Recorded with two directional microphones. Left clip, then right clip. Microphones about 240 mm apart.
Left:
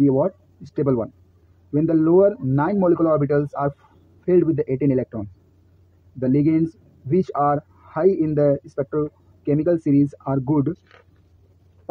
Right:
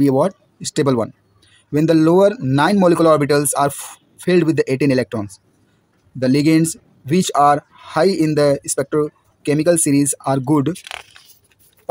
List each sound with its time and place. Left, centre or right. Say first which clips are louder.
0.0 s speech: right 3 dB; right
3.1 s speech: right 6 dB; right